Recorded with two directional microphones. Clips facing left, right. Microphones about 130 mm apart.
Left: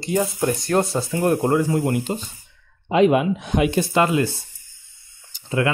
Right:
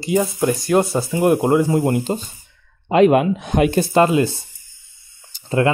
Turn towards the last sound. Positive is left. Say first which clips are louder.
# right 4 dB
turn(degrees=-35)  # may be behind; listen again after turning